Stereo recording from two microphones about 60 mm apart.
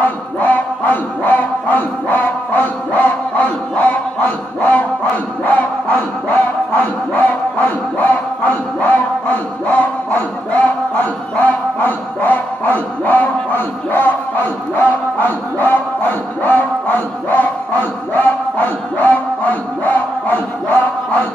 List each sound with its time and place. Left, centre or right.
0.4 s music: left
7.2 s a sound: left
19.8 s battle cry: left